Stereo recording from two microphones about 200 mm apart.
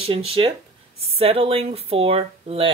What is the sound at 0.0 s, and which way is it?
Speech, 30° right (ahead or behind).